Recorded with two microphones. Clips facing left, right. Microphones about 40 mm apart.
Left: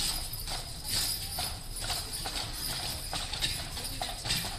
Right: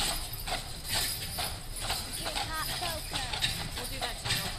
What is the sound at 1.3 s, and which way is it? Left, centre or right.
Clip-clop, right.